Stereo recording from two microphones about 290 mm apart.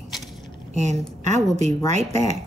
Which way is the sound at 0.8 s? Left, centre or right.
Right.